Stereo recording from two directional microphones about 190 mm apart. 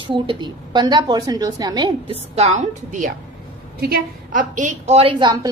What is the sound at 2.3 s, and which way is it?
Speech, 40° right (ahead or behind).